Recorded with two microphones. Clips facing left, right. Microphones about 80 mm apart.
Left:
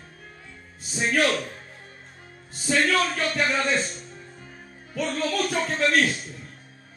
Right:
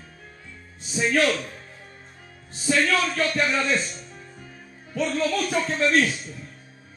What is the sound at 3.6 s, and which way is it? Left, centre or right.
Speech, left.